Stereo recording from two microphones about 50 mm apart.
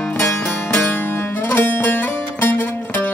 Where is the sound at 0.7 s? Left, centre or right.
Left.